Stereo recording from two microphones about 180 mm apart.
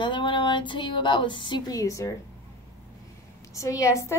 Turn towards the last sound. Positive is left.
turn(degrees=15)  # may be behind; listen again after turning